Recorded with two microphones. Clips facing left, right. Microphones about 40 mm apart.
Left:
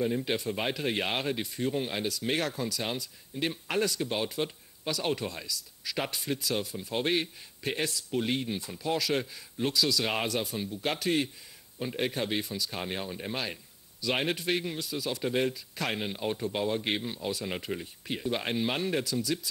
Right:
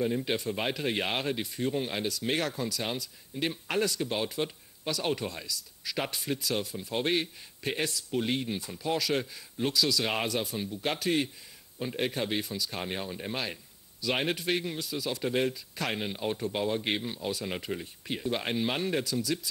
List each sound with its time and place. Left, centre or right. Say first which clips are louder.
0.0 s speech: even; centre